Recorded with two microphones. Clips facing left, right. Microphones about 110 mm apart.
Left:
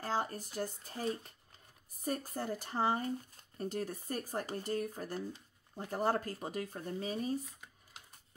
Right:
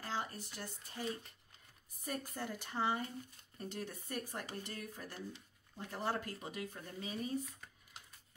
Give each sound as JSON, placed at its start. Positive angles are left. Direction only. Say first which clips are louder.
{"t": 0.0, "sound": "speech", "louder": "left 6 dB", "side_deg": 40}